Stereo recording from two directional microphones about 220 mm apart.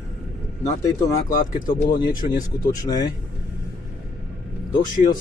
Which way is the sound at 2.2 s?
30° left (ahead or behind).